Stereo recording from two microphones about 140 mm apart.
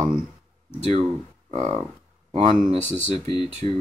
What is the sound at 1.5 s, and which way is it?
Speech, 50° right (ahead or behind).